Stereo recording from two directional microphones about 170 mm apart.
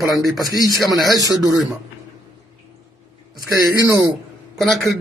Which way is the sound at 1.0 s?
20° right (ahead or behind).